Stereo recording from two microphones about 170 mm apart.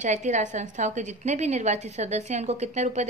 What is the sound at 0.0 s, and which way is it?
A woman's voice, 45° right (ahead or behind).